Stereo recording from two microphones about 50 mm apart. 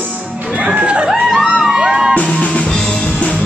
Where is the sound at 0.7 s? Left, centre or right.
Right.